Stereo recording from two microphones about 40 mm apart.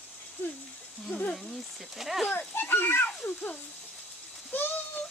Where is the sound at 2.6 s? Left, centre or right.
Left.